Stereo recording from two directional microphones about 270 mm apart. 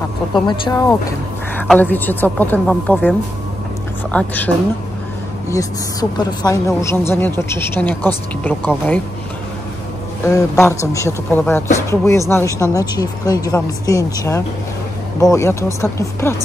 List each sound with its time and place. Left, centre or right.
0.3 s a woman's voice: centre
5.5 s a woman's voice: centre
10.2 s a woman's voice: centre